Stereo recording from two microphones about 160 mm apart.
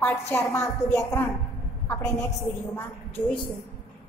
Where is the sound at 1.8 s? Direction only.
10° left (ahead or behind).